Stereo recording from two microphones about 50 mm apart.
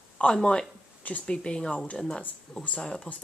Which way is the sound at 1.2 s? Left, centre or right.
Centre.